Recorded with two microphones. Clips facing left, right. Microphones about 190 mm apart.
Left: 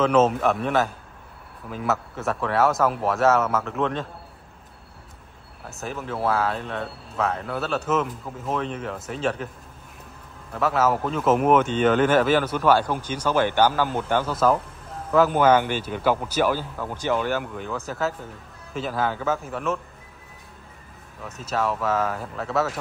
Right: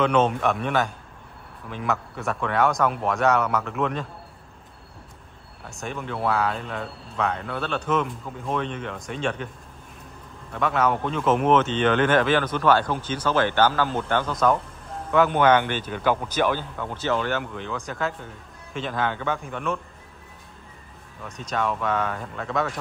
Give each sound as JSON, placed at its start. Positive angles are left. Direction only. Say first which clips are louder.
{"t": 0.0, "sound": "speech", "louder": "left 2 dB", "side_deg": 5}
{"t": 5.7, "sound": "speech", "louder": "left 1 dB", "side_deg": 5}
{"t": 10.5, "sound": "speech", "louder": "left 1 dB", "side_deg": 5}
{"t": 21.2, "sound": "speech", "louder": "left 1 dB", "side_deg": 5}